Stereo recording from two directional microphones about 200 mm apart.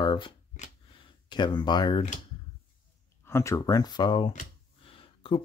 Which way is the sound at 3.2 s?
15° left (ahead or behind).